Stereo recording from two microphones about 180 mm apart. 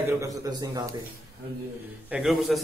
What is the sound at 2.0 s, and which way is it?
Speech, 5° right (ahead or behind).